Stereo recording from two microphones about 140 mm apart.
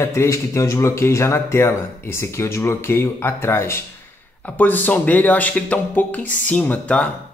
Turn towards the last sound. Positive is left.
turn(degrees=10)  # may be behind; listen again after turning